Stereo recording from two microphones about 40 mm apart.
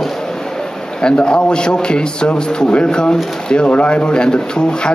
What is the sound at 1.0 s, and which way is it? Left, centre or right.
Speech, left.